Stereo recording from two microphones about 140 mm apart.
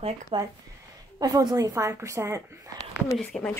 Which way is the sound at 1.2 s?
25° right (ahead or behind).